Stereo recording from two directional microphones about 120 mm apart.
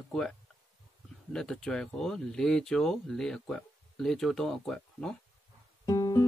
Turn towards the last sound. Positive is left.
turn(degrees=30)  # may be behind; listen again after turning